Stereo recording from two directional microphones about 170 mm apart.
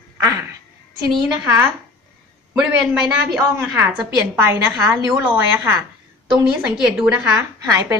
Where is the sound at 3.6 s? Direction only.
15° right (ahead or behind).